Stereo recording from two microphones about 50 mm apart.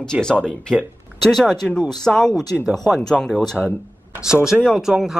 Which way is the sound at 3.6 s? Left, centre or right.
Left.